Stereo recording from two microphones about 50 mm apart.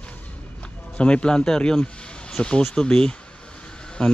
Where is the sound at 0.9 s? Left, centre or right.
Left.